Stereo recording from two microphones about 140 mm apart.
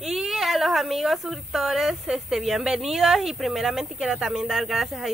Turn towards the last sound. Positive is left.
turn(degrees=0)  # may be behind; listen again after turning